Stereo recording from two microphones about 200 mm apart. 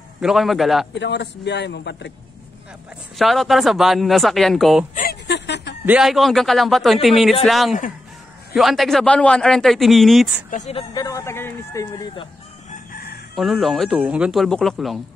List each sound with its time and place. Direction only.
0.2 s a man's voice: centre (ahead or behind)
0.9 s a man's voice: 60° left (ahead or behind)
3.2 s a man's voice: centre (ahead or behind)
5.2 s a sound: 60° left (ahead or behind)
5.9 s a man's voice: centre (ahead or behind)
10.5 s speech: 35° left (ahead or behind)
13.4 s a man's voice: centre (ahead or behind)